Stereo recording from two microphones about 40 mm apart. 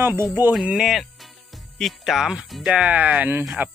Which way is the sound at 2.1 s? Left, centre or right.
Centre.